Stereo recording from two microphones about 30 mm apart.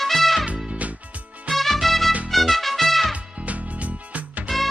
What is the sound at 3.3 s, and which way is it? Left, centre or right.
Music, right.